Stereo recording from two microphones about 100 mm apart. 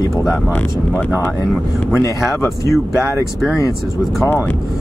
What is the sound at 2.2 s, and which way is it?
Speech, centre (ahead or behind).